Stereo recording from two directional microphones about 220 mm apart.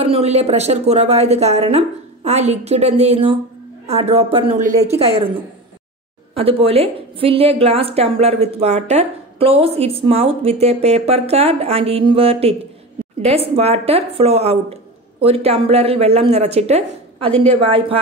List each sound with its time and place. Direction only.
0.0 s a woman's voice: 30° right (ahead or behind)
6.3 s a woman's voice: 25° right (ahead or behind)
17.3 s a woman's voice: 5° left (ahead or behind)
17.6 s a woman's voice: 25° right (ahead or behind)